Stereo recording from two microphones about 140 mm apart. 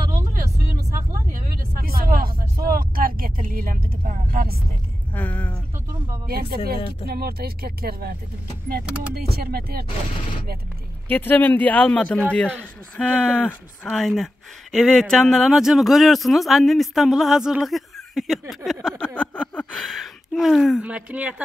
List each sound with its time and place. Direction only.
1.8 s vehicle: 90° right
5.1 s a sound: 10° left (ahead or behind)
6.2 s speech: 90° right
11.1 s speech: 15° left (ahead or behind); by 21.4 s 10° right (ahead or behind)